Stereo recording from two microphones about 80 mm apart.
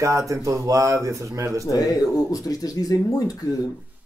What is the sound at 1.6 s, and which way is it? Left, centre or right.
Speech, left.